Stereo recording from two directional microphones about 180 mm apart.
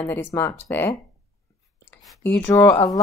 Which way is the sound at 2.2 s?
10° left (ahead or behind).